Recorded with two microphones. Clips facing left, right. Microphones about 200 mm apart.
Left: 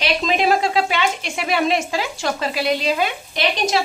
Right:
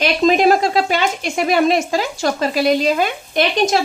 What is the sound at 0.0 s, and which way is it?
Speech, 45° right (ahead or behind).